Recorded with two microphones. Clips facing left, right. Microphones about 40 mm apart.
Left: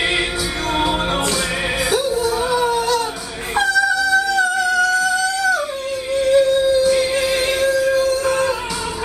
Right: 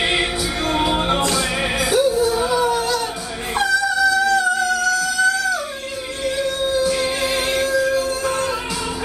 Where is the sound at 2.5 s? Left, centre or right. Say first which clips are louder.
Left 1 dB; left.